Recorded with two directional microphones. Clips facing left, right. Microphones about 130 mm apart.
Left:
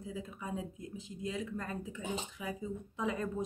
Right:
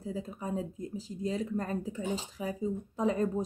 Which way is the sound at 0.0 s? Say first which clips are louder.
Right 5 dB; 35° right (ahead or behind).